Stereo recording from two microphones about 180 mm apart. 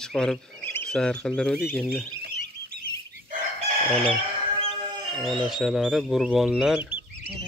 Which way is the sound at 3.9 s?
5° left (ahead or behind).